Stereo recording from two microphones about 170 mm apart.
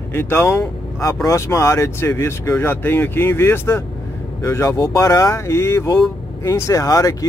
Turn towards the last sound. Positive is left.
turn(degrees=20)  # may be behind; listen again after turning